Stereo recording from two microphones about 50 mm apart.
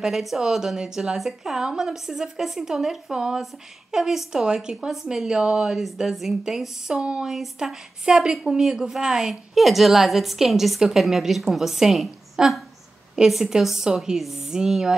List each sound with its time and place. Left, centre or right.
0.0 s a woman's voice: centre
7.0 s a woman's voice: centre